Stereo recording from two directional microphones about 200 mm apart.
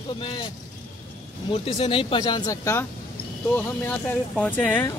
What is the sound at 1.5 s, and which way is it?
Speech, 25° left (ahead or behind).